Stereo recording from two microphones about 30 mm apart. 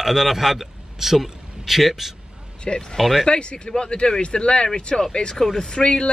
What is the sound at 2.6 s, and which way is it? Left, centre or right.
A man's voice, left.